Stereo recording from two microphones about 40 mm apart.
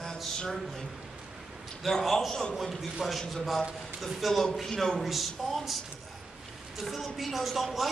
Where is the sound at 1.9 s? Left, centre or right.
Centre.